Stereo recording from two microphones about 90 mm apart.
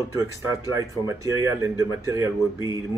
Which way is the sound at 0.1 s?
35° right (ahead or behind).